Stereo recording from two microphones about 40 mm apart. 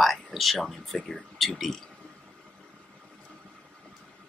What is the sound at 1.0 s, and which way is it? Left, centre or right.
Speech, centre.